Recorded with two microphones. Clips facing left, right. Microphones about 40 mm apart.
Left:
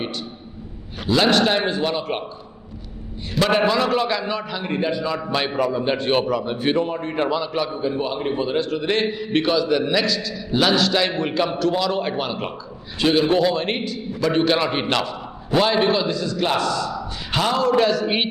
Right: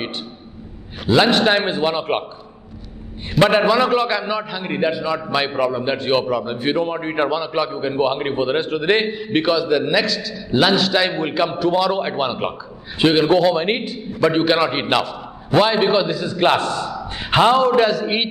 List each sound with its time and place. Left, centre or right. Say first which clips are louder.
1.1 s a man's voice: right 3 dB; right
3.3 s a man's voice: right 4 dB; right
3.6 s a man's voice: right 3 dB; centre
6.9 s a man's voice: right 2 dB; right
7.8 s a man's voice: right 4 dB; right
9.0 s a man's voice: right 2 dB; centre
16.3 s a man's voice: right 6 dB; right
17.8 s a man's voice: right 1 dB; centre